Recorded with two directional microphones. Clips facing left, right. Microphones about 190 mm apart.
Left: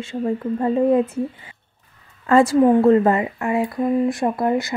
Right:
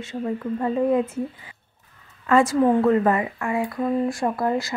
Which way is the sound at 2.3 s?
35° left (ahead or behind).